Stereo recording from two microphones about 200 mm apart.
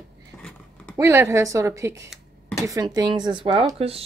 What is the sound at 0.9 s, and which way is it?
Speech, 15° right (ahead or behind).